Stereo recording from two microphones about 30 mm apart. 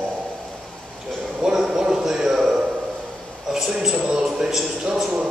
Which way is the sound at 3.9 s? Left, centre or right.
Right.